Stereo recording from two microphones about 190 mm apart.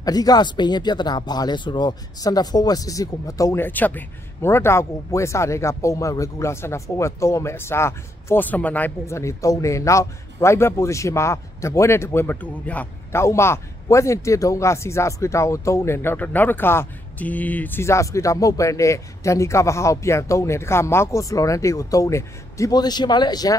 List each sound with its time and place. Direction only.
0.0 s speech: 20° left (ahead or behind)